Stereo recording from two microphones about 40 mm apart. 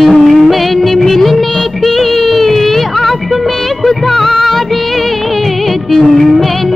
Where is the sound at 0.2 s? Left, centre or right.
Centre.